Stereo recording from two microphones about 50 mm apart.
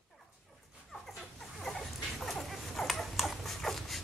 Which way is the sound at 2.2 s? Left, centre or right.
Centre.